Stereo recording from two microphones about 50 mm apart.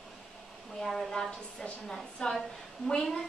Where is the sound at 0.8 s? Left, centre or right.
Centre.